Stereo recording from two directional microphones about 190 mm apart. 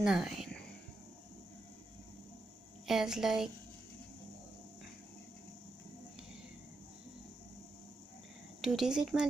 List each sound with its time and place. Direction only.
0.0 s a sound: centre (ahead or behind)
2.9 s speech: centre (ahead or behind)
8.5 s speech: centre (ahead or behind)